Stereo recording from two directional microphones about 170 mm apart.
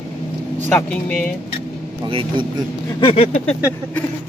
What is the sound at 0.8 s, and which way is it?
Speech, 5° left (ahead or behind).